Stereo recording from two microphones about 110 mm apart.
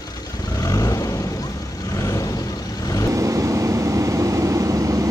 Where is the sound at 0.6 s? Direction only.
30° left (ahead or behind).